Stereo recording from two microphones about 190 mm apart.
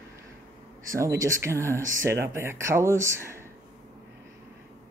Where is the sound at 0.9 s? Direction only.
15° right (ahead or behind).